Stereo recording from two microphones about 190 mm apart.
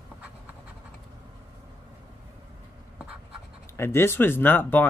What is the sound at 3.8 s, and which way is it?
Speech, 15° left (ahead or behind).